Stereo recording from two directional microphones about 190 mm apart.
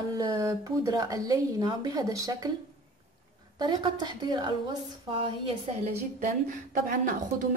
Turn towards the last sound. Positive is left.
turn(degrees=-45)  # may be behind; listen again after turning